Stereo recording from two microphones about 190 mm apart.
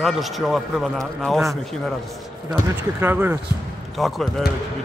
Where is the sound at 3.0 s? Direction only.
10° right (ahead or behind).